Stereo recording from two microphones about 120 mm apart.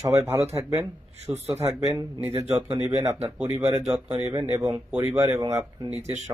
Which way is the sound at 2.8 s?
20° right (ahead or behind).